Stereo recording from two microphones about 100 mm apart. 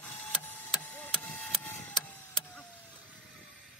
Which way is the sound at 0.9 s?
15° left (ahead or behind).